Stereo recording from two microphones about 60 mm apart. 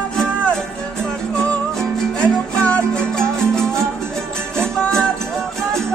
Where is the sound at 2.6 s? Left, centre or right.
Left.